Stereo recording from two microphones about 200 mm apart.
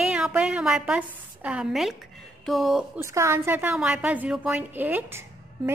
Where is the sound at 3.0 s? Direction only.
15° right (ahead or behind).